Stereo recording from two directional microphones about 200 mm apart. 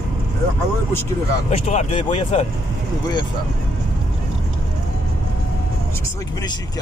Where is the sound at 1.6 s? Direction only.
35° left (ahead or behind).